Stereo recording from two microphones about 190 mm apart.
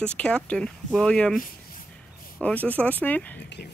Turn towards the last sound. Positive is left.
turn(degrees=10)  # may be behind; listen again after turning